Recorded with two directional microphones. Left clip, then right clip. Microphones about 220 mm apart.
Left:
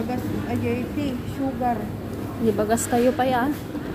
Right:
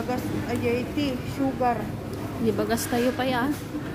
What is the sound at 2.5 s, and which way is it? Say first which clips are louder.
Speech: left 6 dB; 10° right (ahead or behind).